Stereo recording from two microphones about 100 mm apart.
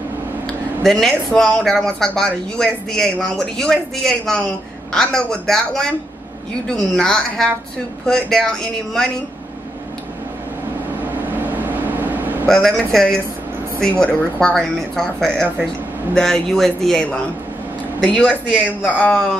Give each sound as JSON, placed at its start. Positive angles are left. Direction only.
{"t": 0.8, "sound": "speech", "side_deg": 5}
{"t": 11.2, "sound": "vehicle", "side_deg": -20}
{"t": 12.4, "sound": "speech", "side_deg": 5}
{"t": 18.2, "sound": "speech", "side_deg": -5}
{"t": 18.9, "sound": "speech", "side_deg": 15}